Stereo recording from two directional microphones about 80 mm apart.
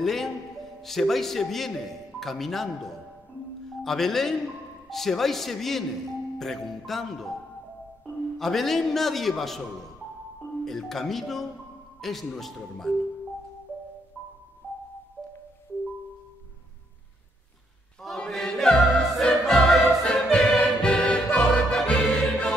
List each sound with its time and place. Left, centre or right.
0.0 s music: centre
0.8 s a man's voice: centre
8.4 s a man's voice: centre
10.6 s a man's voice: centre
14.6 s music: left
18.0 s music: centre